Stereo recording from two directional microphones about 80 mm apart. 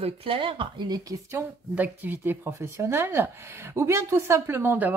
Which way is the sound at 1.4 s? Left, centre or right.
Right.